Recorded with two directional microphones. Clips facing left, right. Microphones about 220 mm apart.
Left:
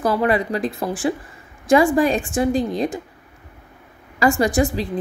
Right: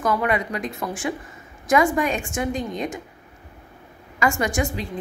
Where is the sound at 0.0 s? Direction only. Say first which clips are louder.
Left 4 dB; 35° left (ahead or behind).